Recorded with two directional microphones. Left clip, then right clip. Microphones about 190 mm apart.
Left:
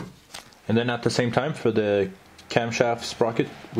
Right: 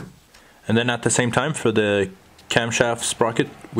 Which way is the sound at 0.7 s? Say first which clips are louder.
Right 3 dB; 10° right (ahead or behind).